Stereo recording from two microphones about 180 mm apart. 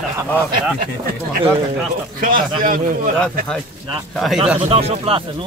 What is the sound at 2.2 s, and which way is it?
Speech, 50° right (ahead or behind).